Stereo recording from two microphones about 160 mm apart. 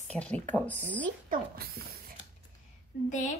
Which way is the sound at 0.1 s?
10° left (ahead or behind).